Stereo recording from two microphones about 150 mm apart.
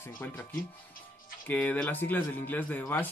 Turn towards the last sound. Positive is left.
turn(degrees=10)  # may be behind; listen again after turning